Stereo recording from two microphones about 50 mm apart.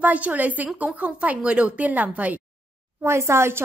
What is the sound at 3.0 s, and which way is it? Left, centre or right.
Speech, right.